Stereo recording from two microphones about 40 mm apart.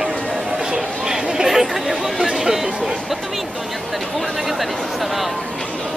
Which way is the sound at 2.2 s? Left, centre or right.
Centre.